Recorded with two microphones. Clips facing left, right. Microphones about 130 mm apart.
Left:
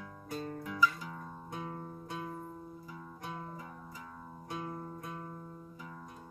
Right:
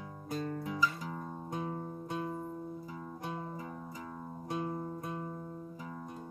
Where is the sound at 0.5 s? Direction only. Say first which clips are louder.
Left 2 dB; 30° right (ahead or behind).